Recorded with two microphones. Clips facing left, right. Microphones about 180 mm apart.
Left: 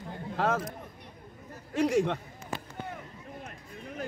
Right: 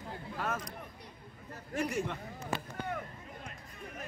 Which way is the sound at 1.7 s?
75° left (ahead or behind).